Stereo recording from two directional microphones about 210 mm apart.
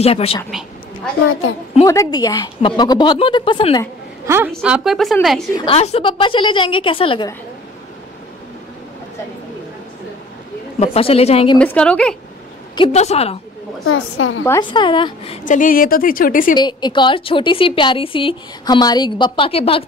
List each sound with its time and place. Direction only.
0.0 s a woman's voice: 30° left (ahead or behind)
0.5 s a sound: centre (ahead or behind)
1.9 s a woman's voice: 15° left (ahead or behind)
4.5 s a woman's voice: centre (ahead or behind)
5.6 s a woman's voice: 30° left (ahead or behind)
10.8 s a woman's voice: 25° left (ahead or behind)
11.5 s a woman's voice: 5° left (ahead or behind)
12.7 s a woman's voice: 30° left (ahead or behind)
13.8 s a woman's voice: 85° left
14.4 s a woman's voice: 10° left (ahead or behind)
14.7 s a woman's voice: 25° left (ahead or behind)
15.4 s a woman's voice: 40° left (ahead or behind)
16.5 s a woman's voice: 20° left (ahead or behind)